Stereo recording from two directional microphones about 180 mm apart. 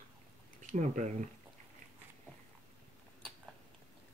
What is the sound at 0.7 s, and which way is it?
Speech, 40° right (ahead or behind).